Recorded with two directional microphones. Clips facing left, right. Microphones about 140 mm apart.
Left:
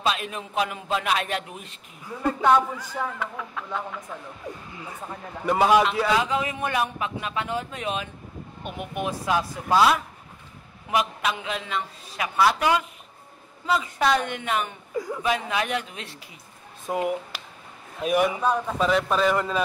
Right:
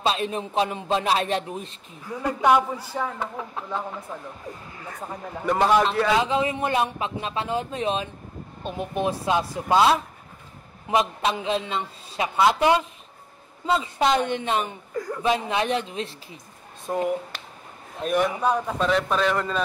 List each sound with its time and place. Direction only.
0.0 s a man's voice: 30° right (ahead or behind)
2.2 s a man's voice: 10° right (ahead or behind)
3.2 s a man's voice: 30° right (ahead or behind)
5.0 s a man's voice: 10° right (ahead or behind)
5.4 s a man's voice: 5° left (ahead or behind)
6.1 s speech: 25° right (ahead or behind)
15.0 s a sound: 5° left (ahead or behind)
15.2 s speech: 25° right (ahead or behind)
16.9 s a man's voice: 10° left (ahead or behind)
18.4 s a man's voice: 10° right (ahead or behind)
18.8 s a man's voice: 5° left (ahead or behind)